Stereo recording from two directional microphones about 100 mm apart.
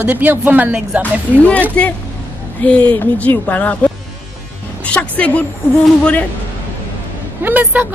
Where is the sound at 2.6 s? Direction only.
10° left (ahead or behind).